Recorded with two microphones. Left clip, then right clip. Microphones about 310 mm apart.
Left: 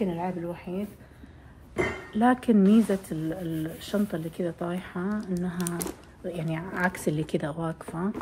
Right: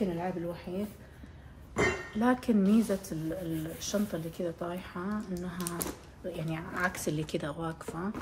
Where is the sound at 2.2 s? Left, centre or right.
Centre.